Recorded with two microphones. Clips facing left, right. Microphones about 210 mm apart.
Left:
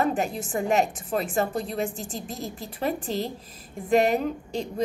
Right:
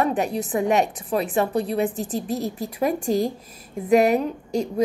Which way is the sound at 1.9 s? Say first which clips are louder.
Right 8 dB; 35° right (ahead or behind).